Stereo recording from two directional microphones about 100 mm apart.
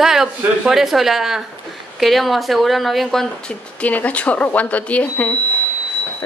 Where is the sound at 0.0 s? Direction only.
5° right (ahead or behind); by 5.3 s 15° left (ahead or behind).